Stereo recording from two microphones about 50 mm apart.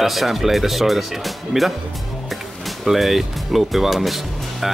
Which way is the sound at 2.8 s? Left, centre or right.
Centre.